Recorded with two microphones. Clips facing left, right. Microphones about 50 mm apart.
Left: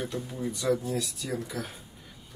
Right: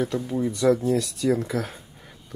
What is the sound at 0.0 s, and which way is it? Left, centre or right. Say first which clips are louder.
Speech: right 8 dB; right.